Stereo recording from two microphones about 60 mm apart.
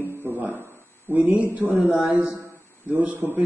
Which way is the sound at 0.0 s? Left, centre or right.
Right.